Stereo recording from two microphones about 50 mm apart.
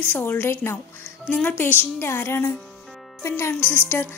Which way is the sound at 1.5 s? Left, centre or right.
Left.